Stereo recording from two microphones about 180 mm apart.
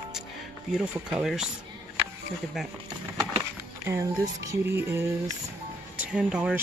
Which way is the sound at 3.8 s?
15° right (ahead or behind).